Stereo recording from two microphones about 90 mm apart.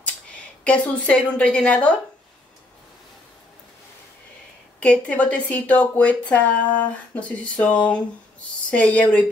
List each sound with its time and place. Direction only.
0.7 s speech: 15° left (ahead or behind)
4.7 s speech: 10° left (ahead or behind)